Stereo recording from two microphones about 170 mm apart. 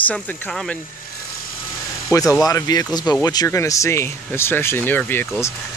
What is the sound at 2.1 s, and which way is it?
Speech, 20° left (ahead or behind).